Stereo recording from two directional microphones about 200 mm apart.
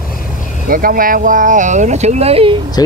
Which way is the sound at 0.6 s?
45° right (ahead or behind).